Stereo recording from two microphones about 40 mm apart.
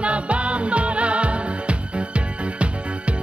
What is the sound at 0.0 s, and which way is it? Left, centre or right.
Music, right.